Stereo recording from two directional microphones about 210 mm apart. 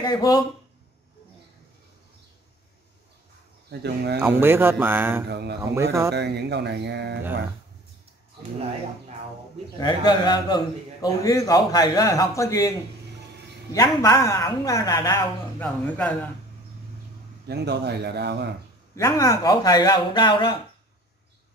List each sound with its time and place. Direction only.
0.0 s a man's voice: 20° left (ahead or behind)
3.8 s speech: 50° right (ahead or behind)
4.2 s speech: 10° right (ahead or behind)
5.3 s speech: 50° right (ahead or behind)
5.8 s speech: 15° right (ahead or behind)
6.1 s speech: 55° right (ahead or behind)
9.8 s a man's voice: 20° left (ahead or behind)
13.7 s a man's voice: 15° left (ahead or behind)
17.5 s speech: 50° right (ahead or behind)
18.9 s speech: 15° left (ahead or behind)